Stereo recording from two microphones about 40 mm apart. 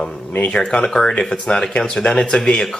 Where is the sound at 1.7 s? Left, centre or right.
Left.